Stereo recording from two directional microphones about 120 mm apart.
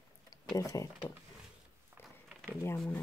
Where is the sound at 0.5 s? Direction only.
30° left (ahead or behind).